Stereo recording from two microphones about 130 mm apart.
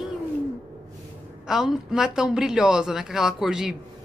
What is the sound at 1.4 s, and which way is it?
A man's voice, 5° right (ahead or behind).